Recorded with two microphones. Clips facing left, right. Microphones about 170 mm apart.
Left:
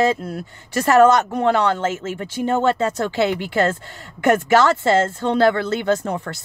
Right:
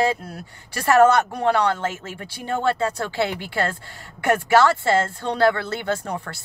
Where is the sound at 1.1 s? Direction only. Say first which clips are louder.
Left 2 dB; 20° left (ahead or behind).